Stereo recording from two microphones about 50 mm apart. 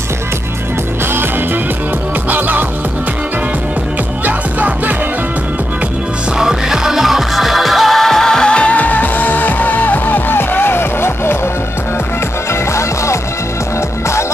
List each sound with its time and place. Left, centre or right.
2.2 s music: right
4.2 s music: right
6.3 s music: centre; by 11.3 s left
12.7 s music: left